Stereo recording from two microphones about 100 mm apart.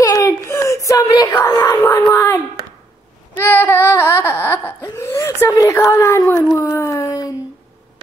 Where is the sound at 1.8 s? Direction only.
30° left (ahead or behind).